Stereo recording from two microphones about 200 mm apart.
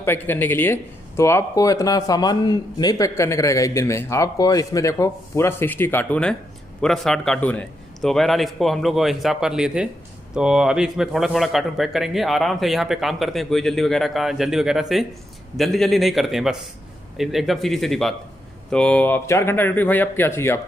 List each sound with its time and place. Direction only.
0.0 s a man's voice: 10° left (ahead or behind)